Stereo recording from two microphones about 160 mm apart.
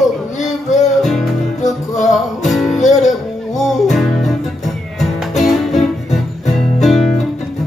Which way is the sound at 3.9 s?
Centre (ahead or behind).